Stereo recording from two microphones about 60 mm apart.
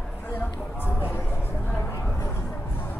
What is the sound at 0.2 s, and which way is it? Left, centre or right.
Music, left.